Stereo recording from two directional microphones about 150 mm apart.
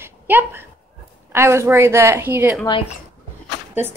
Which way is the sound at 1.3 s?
20° right (ahead or behind).